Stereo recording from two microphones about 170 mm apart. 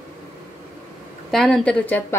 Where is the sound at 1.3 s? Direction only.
5° left (ahead or behind).